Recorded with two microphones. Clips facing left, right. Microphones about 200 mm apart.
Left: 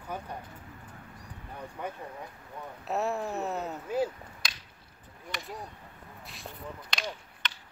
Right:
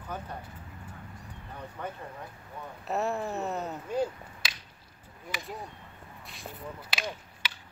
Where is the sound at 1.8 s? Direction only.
10° left (ahead or behind).